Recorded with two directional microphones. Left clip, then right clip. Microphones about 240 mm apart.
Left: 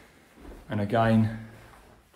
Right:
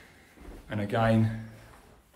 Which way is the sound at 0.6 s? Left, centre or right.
Left.